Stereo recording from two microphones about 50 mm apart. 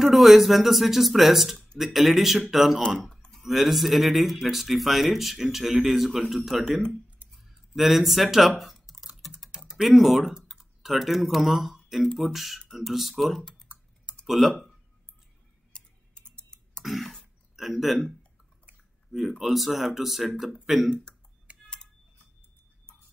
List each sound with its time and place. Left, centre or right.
0.0 s speech: centre
3.1 s clicking: centre
3.3 s speech: centre
7.2 s a sound: right
7.7 s speech: centre
9.0 s typing: centre
9.5 s typing: centre
9.8 s speech: centre
15.7 s typing: centre
16.8 s throat clearing: centre
17.6 s speech: centre
19.1 s speech: centre
21.5 s typing: right